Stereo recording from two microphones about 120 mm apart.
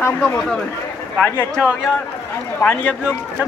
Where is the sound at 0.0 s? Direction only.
20° left (ahead or behind).